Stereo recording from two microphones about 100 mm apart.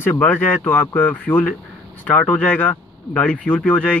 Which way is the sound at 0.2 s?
15° left (ahead or behind).